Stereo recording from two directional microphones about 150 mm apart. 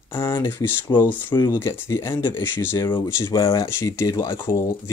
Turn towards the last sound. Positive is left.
turn(degrees=20)  # may be behind; listen again after turning